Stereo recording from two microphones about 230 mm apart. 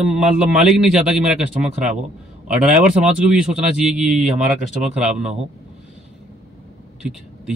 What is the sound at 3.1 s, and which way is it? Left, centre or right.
Speech, centre.